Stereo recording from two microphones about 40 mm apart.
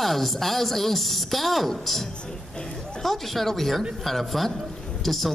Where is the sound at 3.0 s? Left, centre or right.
Centre.